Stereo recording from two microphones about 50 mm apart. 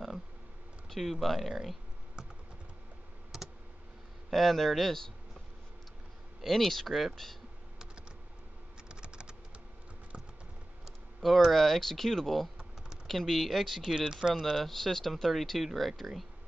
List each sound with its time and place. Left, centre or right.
0.8 s speech: centre
3.3 s computer keyboard: centre
4.3 s speech: centre
6.4 s speech: centre
8.8 s typing: centre
11.1 s speech: centre
13.9 s speech: centre
14.5 s speech: centre